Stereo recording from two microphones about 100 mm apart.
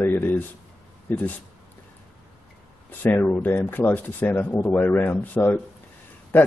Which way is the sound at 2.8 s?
20° left (ahead or behind).